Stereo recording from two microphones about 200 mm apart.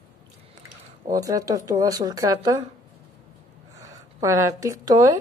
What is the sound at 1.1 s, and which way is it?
Speech, 15° right (ahead or behind).